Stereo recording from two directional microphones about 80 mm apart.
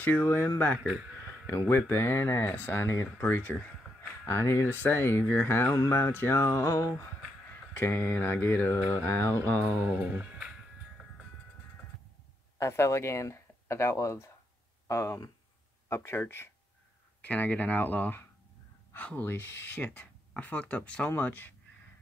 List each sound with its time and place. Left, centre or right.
0.0 s speech: left
1.5 s speech: left
4.3 s a sound: left
5.3 s speech: left
5.8 s a sound: left
7.7 s speech: left
9.9 s speech: right
12.5 s speech: left
15.9 s a sound: left
17.2 s speech: centre